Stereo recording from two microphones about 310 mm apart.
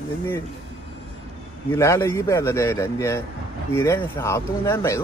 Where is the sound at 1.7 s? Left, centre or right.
Centre.